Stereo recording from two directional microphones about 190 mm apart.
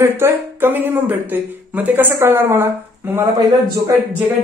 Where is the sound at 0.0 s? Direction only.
10° right (ahead or behind).